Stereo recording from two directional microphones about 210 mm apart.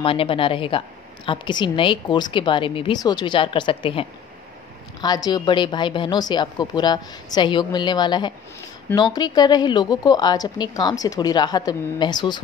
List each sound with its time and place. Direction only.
0.0 s a woman's voice: 25° left (ahead or behind)